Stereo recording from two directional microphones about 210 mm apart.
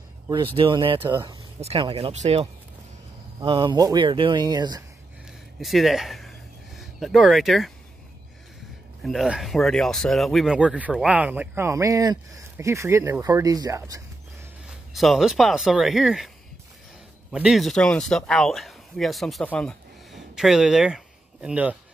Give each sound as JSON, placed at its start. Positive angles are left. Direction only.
{"t": 0.6, "sound": "speech", "side_deg": -25}
{"t": 5.6, "sound": "speech", "side_deg": 0}
{"t": 9.0, "sound": "speech", "side_deg": 0}
{"t": 14.7, "sound": "speech", "side_deg": 0}
{"t": 17.3, "sound": "speech", "side_deg": -5}